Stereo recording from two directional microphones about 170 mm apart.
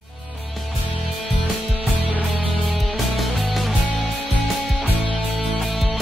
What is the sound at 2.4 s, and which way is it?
Music, centre (ahead or behind).